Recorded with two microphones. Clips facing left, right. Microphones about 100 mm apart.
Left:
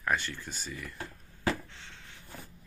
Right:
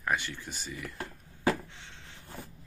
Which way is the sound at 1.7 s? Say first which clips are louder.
Even; 20° right (ahead or behind).